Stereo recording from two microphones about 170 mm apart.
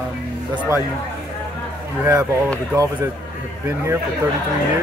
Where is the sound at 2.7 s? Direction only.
20° right (ahead or behind).